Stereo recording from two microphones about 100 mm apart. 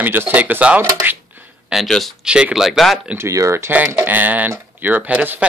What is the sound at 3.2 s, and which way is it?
Speech, 30° right (ahead or behind).